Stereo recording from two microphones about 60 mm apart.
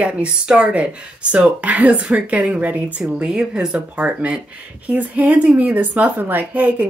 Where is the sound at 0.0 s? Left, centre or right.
Centre.